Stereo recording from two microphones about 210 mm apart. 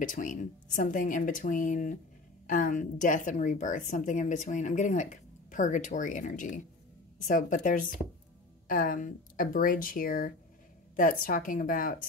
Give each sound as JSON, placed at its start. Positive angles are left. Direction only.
{"t": 0.0, "sound": "a woman's voice", "side_deg": 40}